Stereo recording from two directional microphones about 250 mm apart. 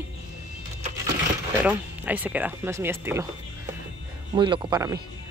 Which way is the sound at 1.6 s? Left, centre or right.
Centre.